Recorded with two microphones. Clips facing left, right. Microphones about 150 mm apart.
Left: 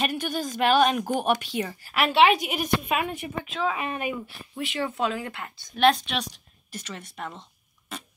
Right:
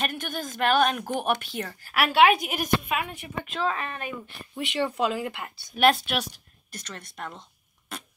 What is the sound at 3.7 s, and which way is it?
Speech, 15° left (ahead or behind).